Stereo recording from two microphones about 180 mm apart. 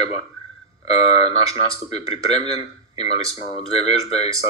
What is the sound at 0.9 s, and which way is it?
Speech, 35° left (ahead or behind).